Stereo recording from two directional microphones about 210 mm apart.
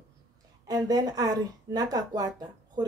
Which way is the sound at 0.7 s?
20° right (ahead or behind).